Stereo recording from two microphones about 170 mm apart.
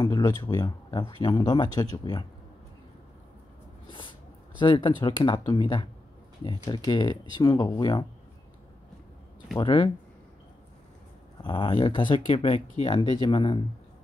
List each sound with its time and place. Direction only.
0.0 s speech: 25° left (ahead or behind)
4.6 s speech: 25° left (ahead or behind)
9.6 s speech: 25° left (ahead or behind)
11.4 s speech: 25° left (ahead or behind)